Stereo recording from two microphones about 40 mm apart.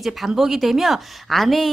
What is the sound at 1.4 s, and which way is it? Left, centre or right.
Speech, centre.